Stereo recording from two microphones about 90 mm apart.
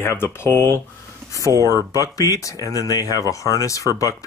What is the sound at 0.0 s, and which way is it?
Speech, 25° left (ahead or behind).